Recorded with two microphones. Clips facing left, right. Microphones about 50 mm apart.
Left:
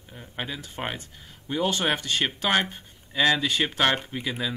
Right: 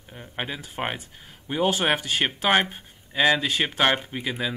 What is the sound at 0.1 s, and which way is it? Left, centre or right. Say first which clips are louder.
Speech: right 2 dB; centre.